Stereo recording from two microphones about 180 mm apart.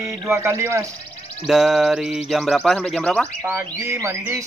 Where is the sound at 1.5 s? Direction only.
Centre (ahead or behind).